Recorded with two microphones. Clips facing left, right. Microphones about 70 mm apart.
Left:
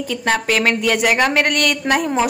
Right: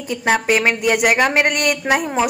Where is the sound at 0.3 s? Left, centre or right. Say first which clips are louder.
Right 1 dB; centre.